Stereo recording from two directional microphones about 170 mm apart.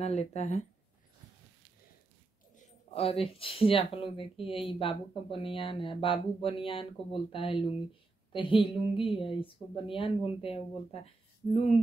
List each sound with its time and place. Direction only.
0.0 s speech: 40° left (ahead or behind)
2.5 s speech: 35° left (ahead or behind)